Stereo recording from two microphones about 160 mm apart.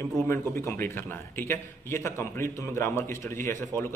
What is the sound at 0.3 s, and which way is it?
Speech, 15° left (ahead or behind).